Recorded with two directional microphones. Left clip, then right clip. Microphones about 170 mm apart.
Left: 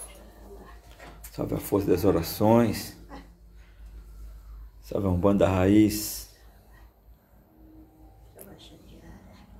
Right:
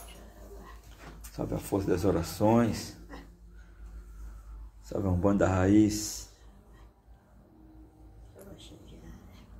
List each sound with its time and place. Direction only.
1.3 s speech: 30° left (ahead or behind)
4.8 s speech: 30° left (ahead or behind)